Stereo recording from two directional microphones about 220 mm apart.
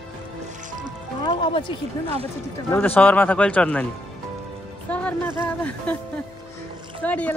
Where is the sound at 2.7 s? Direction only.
10° left (ahead or behind).